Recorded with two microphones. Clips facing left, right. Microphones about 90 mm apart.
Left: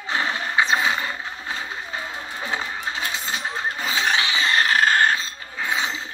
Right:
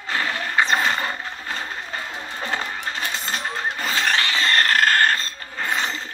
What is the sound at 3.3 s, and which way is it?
Vehicle, 55° right (ahead or behind).